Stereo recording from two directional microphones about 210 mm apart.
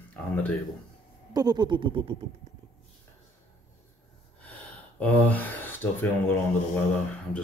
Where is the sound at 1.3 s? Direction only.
20° right (ahead or behind).